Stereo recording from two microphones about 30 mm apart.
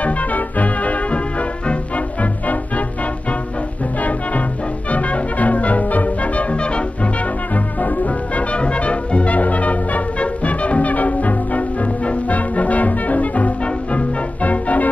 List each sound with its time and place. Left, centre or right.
0.0 s music: left
4.9 s music: left
6.5 s music: left
7.5 s music: left
8.5 s music: left